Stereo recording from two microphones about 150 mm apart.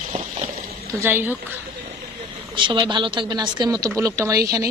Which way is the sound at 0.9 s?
15° right (ahead or behind).